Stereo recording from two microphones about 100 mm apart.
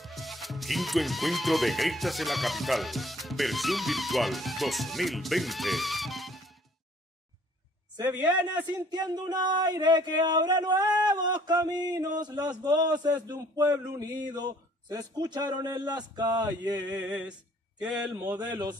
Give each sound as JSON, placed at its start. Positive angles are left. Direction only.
{"t": 0.0, "sound": "speech", "side_deg": 0}
{"t": 8.9, "sound": "a sound", "side_deg": -40}
{"t": 9.3, "sound": "a man's voice", "side_deg": -45}
{"t": 16.9, "sound": "a sound", "side_deg": -15}
{"t": 17.9, "sound": "mantra", "side_deg": -15}
{"t": 18.4, "sound": "a man's voice", "side_deg": -45}